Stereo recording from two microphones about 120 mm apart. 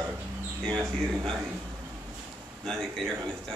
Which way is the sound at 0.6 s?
5° left (ahead or behind).